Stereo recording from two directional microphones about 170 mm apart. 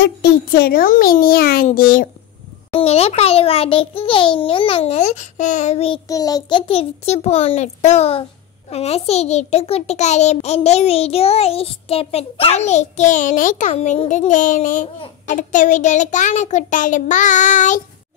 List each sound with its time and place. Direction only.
0.0 s a child's voice: 70° left (ahead or behind); by 2.0 s 55° left (ahead or behind)
2.7 s a child's voice: 35° left (ahead or behind)
6.0 s child singing: 20° left (ahead or behind)
6.7 s a child's voice: 35° left (ahead or behind)